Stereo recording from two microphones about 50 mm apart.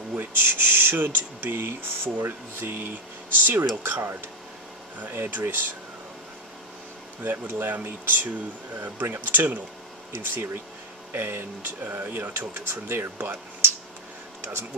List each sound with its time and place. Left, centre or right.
0.1 s speech: right
5.1 s speech: right
7.2 s speech: right